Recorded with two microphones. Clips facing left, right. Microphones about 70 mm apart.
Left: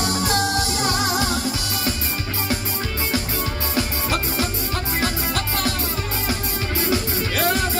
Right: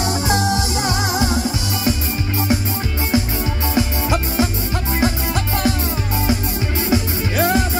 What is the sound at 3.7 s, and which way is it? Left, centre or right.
Music, right.